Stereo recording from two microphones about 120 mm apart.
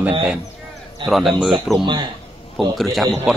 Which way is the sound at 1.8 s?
40° right (ahead or behind).